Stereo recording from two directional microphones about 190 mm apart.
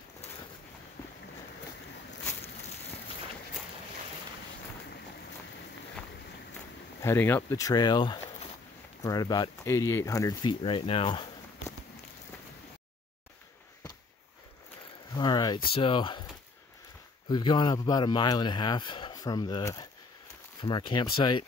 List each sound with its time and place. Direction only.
7.0 s speech: 10° left (ahead or behind)
15.1 s a sound: 20° left (ahead or behind)
15.7 s speech: 25° left (ahead or behind)
17.3 s speech: 25° left (ahead or behind)